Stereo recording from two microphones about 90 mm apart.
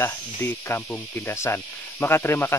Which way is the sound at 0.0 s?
25° left (ahead or behind).